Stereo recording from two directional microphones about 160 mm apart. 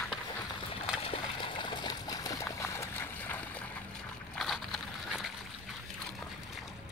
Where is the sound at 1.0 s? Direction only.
35° left (ahead or behind); by 3.6 s 15° left (ahead or behind).